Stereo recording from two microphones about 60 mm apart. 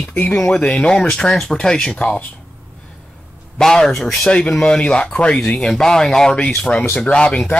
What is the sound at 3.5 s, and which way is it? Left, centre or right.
Speech, centre.